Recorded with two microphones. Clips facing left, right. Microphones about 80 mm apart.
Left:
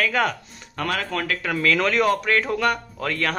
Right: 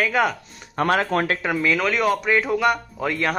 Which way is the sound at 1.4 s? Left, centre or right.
Centre.